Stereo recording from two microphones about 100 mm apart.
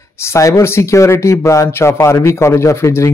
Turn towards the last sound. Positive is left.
turn(degrees=30)  # may be behind; listen again after turning